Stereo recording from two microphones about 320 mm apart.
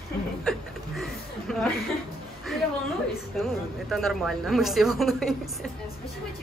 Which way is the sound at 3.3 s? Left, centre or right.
Centre.